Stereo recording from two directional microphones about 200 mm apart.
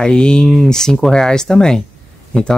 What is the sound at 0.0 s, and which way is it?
Speech, 5° left (ahead or behind).